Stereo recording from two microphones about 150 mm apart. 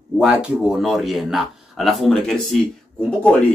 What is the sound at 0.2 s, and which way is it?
Speech, 5° right (ahead or behind).